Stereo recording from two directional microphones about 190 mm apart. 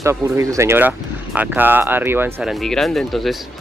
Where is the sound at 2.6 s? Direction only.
Centre (ahead or behind).